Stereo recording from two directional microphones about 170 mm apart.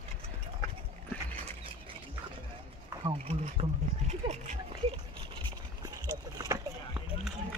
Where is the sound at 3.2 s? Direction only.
40° right (ahead or behind).